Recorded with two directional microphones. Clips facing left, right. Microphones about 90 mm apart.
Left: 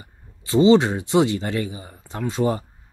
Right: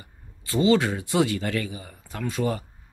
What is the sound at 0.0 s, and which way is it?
Speech, 25° left (ahead or behind).